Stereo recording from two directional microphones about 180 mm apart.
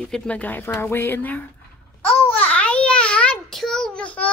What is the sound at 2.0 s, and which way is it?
Babbling, 10° left (ahead or behind).